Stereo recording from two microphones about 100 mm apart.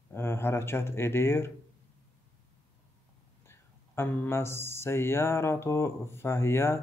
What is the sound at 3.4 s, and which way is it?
Speech, 25° left (ahead or behind).